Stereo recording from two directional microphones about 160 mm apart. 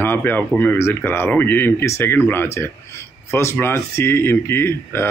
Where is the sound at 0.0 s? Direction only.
10° left (ahead or behind).